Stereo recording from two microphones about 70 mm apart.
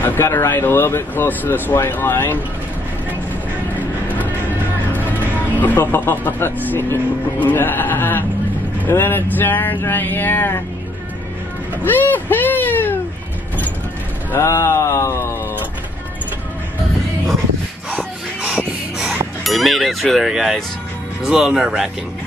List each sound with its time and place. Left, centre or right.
0.0 s speech: left
5.1 s speech: left
11.8 s speech: left
14.3 s a sound: left
17.9 s a sound: centre
18.9 s speech: centre